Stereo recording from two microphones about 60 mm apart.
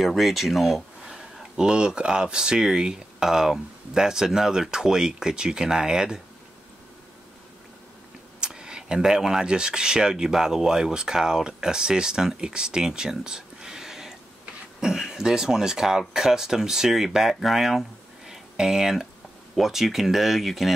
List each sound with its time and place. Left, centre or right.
0.0 s speech: centre
8.4 s speech: centre